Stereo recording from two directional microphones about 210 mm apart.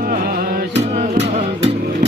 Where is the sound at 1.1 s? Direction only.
30° right (ahead or behind).